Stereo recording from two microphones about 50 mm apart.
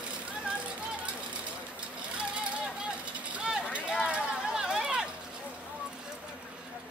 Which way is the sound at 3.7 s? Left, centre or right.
Centre.